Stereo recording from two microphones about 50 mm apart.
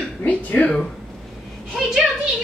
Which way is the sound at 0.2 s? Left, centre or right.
Left.